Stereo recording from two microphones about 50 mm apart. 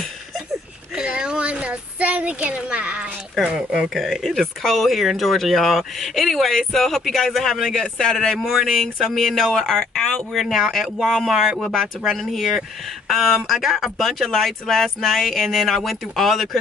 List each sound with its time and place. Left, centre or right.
0.9 s a sound: centre
3.4 s speech: centre
7.7 s a man's voice: centre
8.4 s speech: centre